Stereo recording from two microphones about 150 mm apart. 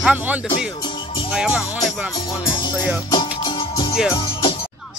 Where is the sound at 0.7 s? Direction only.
30° left (ahead or behind).